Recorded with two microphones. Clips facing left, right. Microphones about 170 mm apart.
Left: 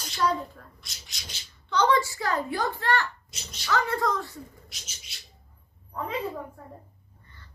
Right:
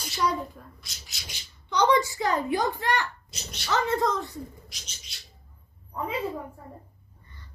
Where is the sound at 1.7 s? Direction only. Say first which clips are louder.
Right 1 dB; 15° right (ahead or behind).